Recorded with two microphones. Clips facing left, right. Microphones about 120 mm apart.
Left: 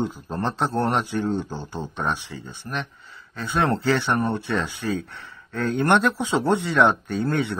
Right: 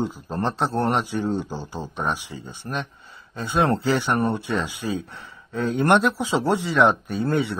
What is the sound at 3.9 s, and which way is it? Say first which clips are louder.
Speech: even; 5° right (ahead or behind).